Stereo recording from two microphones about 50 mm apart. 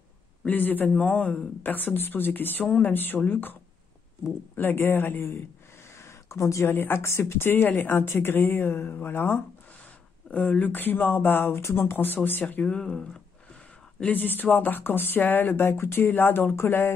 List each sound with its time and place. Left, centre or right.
0.5 s speech: left
0.9 s speech: left
1.6 s speech: left
4.6 s speech: left
5.9 s a sound: left
6.7 s speech: left
10.6 s speech: left
11.5 s speech: left
12.6 s speech: centre
14.1 s speech: left